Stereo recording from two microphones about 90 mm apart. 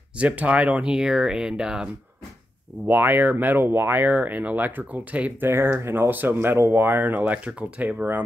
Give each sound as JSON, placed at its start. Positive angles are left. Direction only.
{"t": 0.2, "sound": "speech", "side_deg": -15}
{"t": 2.9, "sound": "speech", "side_deg": -20}